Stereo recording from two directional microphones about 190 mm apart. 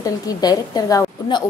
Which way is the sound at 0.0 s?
20° left (ahead or behind).